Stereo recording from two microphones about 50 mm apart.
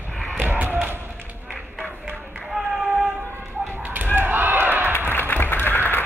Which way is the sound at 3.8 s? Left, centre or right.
Right.